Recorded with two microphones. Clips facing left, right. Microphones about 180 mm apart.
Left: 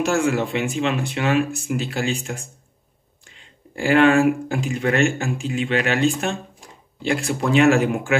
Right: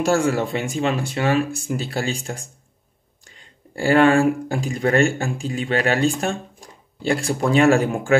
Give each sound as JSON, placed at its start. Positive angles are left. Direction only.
{"t": 0.0, "sound": "speech", "side_deg": -35}
{"t": 3.7, "sound": "speech", "side_deg": -35}